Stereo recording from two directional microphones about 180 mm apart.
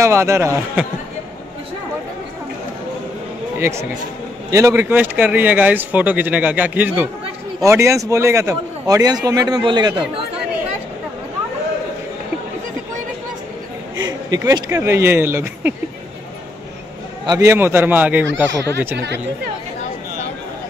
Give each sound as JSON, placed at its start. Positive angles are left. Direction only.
{"t": 0.0, "sound": "speech", "side_deg": -15}
{"t": 3.5, "sound": "a man's voice", "side_deg": -15}
{"t": 14.0, "sound": "speech", "side_deg": -20}
{"t": 17.3, "sound": "speech", "side_deg": -15}
{"t": 18.9, "sound": "speech", "side_deg": -75}